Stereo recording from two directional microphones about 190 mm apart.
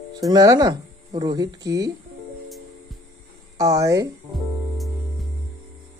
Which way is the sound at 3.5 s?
20° right (ahead or behind).